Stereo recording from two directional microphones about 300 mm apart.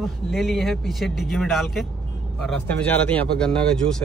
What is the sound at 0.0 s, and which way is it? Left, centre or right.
Speech, centre.